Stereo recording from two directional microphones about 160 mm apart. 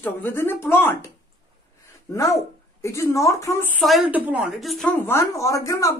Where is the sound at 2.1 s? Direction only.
20° left (ahead or behind).